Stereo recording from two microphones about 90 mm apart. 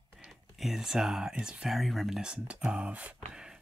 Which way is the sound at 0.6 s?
5° right (ahead or behind).